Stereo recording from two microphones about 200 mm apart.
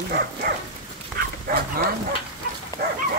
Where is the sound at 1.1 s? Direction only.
50° right (ahead or behind).